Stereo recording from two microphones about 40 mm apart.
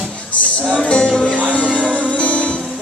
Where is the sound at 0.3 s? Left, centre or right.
Left.